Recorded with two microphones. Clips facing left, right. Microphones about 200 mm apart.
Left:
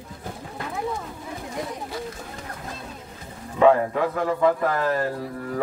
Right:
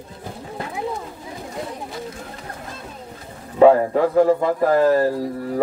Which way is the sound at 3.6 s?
35° right (ahead or behind).